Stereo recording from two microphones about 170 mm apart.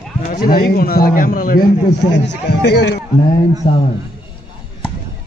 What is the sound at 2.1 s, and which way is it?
Speech, 80° left.